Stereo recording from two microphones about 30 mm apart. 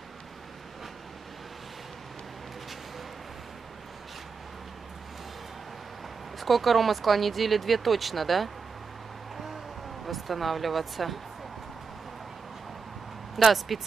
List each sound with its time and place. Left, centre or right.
6.4 s speech: centre
10.0 s speech: centre
13.4 s speech: centre